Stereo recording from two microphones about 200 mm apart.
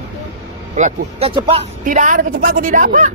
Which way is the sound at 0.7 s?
35° right (ahead or behind).